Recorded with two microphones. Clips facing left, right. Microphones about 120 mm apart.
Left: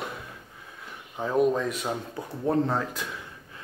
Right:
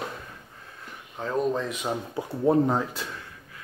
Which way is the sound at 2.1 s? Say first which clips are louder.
Right 5 dB; 15° right (ahead or behind).